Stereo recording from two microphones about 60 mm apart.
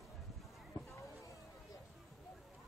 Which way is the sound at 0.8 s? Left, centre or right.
Left.